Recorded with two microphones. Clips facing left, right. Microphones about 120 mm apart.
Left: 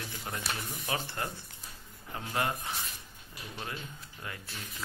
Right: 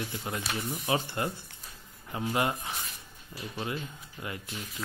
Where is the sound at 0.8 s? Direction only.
20° right (ahead or behind).